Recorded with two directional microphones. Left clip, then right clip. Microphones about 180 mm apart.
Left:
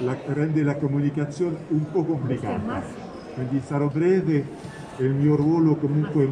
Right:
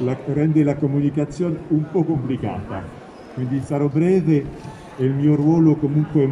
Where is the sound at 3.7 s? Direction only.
10° right (ahead or behind).